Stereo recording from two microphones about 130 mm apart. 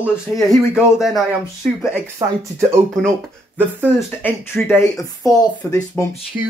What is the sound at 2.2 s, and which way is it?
Speech, 25° right (ahead or behind).